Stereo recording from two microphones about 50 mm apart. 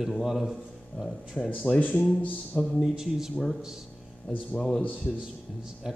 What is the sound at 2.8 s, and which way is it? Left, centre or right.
Speech, centre.